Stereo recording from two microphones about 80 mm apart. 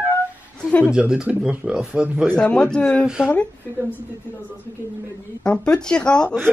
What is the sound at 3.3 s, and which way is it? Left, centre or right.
Speech, left.